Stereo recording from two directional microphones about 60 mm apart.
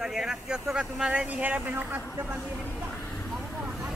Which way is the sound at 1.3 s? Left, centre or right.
Right.